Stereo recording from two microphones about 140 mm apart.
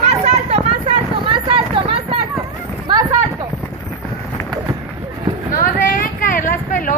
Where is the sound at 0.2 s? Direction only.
45° right (ahead or behind).